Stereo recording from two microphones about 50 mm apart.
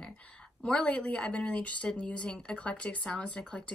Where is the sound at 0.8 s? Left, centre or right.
Left.